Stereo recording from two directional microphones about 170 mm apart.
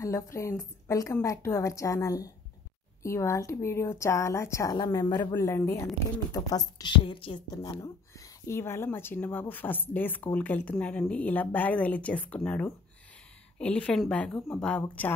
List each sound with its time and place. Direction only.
0.0 s a woman's voice: 15° left (ahead or behind)